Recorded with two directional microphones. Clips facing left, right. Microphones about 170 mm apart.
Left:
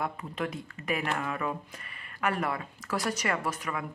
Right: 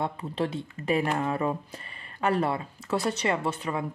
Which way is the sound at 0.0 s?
30° right (ahead or behind).